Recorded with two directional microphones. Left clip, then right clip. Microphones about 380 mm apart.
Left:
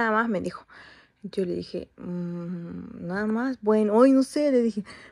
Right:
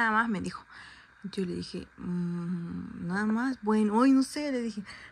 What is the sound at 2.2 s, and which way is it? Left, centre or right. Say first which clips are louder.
Speech: left 2 dB; left.